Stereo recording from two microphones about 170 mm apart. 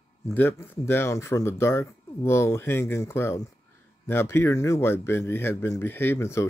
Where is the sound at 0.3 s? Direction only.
15° left (ahead or behind).